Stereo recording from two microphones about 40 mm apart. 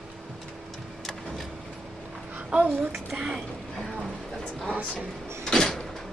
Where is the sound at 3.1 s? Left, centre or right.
Right.